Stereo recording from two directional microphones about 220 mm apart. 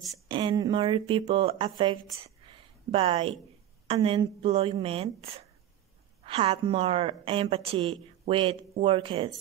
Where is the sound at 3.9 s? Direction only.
25° right (ahead or behind).